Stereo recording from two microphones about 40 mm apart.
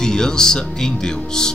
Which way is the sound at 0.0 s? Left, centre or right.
Centre.